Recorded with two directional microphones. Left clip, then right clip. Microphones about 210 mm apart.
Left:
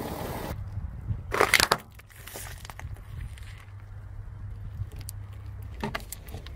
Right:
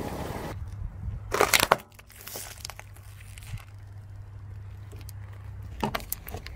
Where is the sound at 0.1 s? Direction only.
55° left (ahead or behind).